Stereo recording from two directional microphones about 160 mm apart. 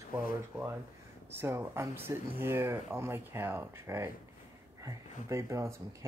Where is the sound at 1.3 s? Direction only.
15° right (ahead or behind).